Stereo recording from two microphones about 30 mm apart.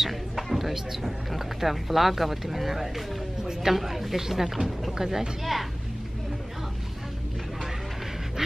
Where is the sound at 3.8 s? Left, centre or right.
Centre.